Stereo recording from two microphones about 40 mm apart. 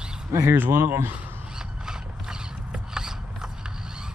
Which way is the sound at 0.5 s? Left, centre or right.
Right.